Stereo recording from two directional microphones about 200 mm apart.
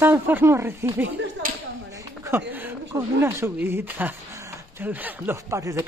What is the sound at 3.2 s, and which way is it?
Speech, 10° right (ahead or behind).